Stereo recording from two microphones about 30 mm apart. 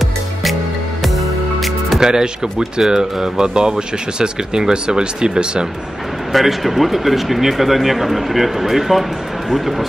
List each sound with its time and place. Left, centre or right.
0.0 s music: centre
2.0 s speech: right
6.3 s speech: centre